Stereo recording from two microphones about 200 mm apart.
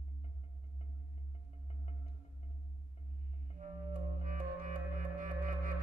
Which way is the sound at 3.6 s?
40° right (ahead or behind).